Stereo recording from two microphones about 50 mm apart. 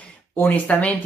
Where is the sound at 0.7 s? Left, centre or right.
Left.